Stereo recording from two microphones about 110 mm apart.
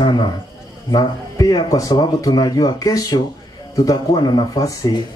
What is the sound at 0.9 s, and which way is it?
Speech, 35° left (ahead or behind).